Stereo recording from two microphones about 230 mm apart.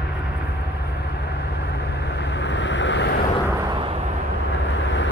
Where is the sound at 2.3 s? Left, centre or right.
Left.